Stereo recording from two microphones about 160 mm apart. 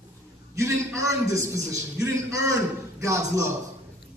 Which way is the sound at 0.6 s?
20° right (ahead or behind).